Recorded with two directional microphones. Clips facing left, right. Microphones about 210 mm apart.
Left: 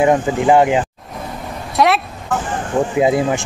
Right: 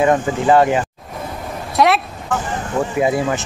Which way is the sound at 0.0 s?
15° left (ahead or behind).